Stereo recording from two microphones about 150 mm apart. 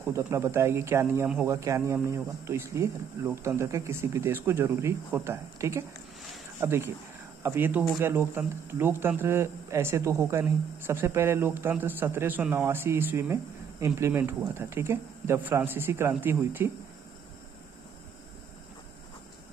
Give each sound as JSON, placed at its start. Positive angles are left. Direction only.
{"t": 0.0, "sound": "speech", "side_deg": -15}